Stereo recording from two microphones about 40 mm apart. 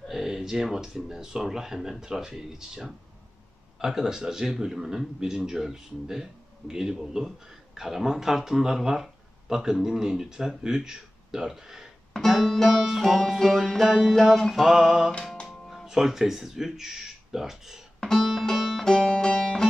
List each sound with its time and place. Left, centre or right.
0.1 s speech: centre
12.3 s music: centre
15.7 s speech: centre
18.4 s music: centre